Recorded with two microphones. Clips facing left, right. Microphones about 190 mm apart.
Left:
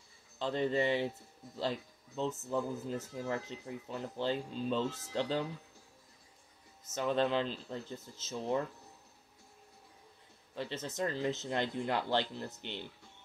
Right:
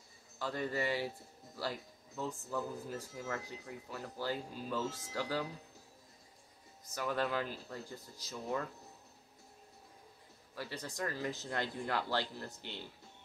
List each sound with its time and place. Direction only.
0.4 s speech: 25° left (ahead or behind)
6.8 s speech: 25° left (ahead or behind)
10.5 s speech: 25° left (ahead or behind)